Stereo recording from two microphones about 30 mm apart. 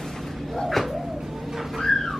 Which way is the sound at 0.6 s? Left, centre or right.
Centre.